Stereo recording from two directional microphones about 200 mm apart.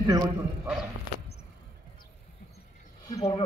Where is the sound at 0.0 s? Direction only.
15° right (ahead or behind).